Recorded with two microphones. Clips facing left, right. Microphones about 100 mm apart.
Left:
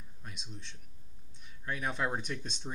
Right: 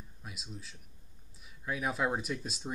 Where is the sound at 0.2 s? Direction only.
5° right (ahead or behind).